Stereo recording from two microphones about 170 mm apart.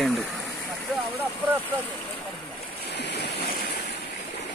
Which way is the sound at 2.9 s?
85° left.